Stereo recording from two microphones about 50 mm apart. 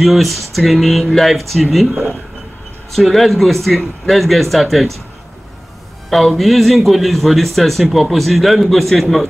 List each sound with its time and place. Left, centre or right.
0.0 s speech: centre
2.9 s speech: centre
6.0 s speech: centre